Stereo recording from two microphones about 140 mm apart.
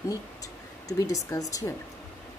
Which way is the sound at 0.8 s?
25° left (ahead or behind).